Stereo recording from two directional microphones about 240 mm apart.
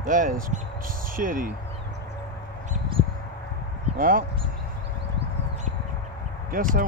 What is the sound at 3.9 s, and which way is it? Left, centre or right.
Speech, right.